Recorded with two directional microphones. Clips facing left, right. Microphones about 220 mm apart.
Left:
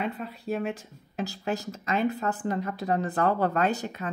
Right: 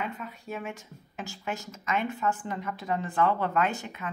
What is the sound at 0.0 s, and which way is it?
Speech, 35° left (ahead or behind).